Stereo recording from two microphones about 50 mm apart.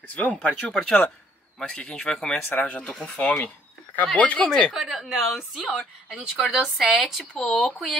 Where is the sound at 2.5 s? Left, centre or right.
Left.